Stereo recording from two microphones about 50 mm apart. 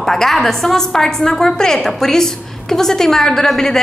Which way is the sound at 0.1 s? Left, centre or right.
Centre.